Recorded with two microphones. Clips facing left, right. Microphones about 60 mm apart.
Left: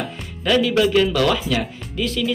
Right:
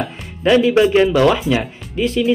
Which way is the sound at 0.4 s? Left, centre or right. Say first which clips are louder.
Right 5 dB; right.